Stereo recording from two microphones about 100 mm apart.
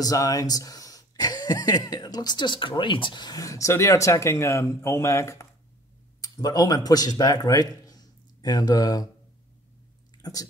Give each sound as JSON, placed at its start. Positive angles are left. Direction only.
{"t": 0.0, "sound": "a man's voice", "side_deg": 35}
{"t": 10.2, "sound": "speech", "side_deg": 40}